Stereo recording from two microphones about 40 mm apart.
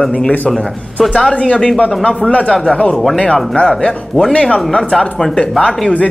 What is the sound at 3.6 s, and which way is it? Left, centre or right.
Speech, centre.